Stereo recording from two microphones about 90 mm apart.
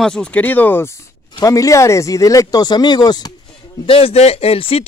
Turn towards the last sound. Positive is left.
turn(degrees=90)